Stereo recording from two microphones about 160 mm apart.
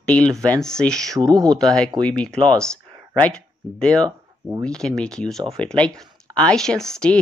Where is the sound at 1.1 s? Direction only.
25° right (ahead or behind).